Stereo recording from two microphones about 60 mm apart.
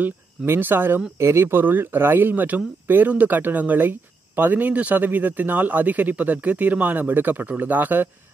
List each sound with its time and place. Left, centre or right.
0.0 s speech: right
1.1 s speech: right